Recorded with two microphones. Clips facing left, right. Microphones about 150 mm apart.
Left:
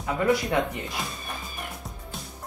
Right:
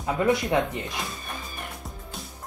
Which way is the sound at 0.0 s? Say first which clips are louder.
Right 1 dB; 20° right (ahead or behind).